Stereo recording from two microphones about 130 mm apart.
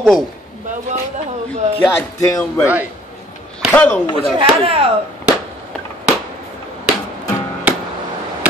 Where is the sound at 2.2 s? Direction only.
25° left (ahead or behind).